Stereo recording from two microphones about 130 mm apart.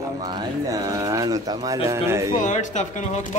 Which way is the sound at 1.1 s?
25° right (ahead or behind).